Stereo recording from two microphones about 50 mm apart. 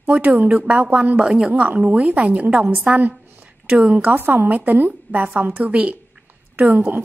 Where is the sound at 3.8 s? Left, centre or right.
Right.